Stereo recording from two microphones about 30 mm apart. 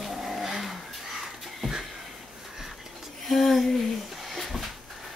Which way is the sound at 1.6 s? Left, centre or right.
Right.